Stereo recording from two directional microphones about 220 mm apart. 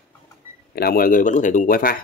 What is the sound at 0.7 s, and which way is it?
Speech, 40° left (ahead or behind).